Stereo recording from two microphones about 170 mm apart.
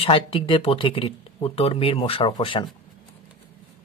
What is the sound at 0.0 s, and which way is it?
Speech, 35° left (ahead or behind).